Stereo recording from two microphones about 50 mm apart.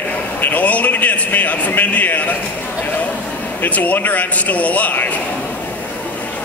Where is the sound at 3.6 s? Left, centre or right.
Left.